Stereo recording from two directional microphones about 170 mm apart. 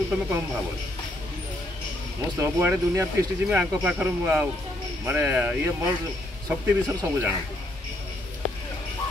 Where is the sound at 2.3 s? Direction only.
15° right (ahead or behind).